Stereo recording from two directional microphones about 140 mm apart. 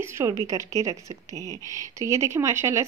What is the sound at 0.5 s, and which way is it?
A woman's voice, 25° right (ahead or behind).